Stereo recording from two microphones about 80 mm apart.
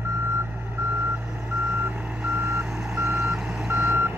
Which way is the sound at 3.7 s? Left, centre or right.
Right.